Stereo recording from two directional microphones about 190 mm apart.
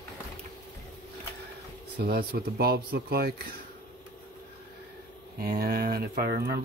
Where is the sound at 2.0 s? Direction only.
55° right (ahead or behind).